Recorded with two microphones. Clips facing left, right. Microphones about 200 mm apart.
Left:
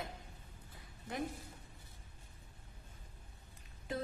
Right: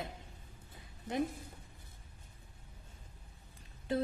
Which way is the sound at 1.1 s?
20° right (ahead or behind).